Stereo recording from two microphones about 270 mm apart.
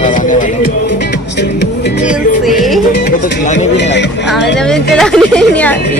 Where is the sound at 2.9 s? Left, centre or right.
Left.